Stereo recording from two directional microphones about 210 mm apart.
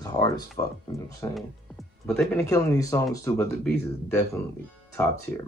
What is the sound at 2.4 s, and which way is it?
Speech, 15° left (ahead or behind).